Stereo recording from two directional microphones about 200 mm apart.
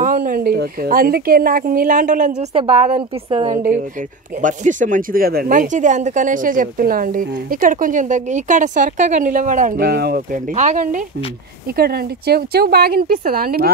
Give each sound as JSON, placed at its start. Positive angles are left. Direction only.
{"t": 0.0, "sound": "a woman's voice", "side_deg": -45}
{"t": 3.3, "sound": "a woman's voice", "side_deg": -25}
{"t": 4.4, "sound": "speech", "side_deg": -40}
{"t": 11.7, "sound": "a woman's voice", "side_deg": -50}